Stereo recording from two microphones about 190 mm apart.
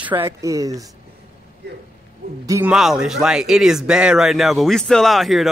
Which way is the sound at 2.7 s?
5° right (ahead or behind).